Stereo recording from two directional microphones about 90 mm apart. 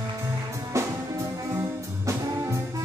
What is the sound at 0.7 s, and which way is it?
Music, 35° right (ahead or behind).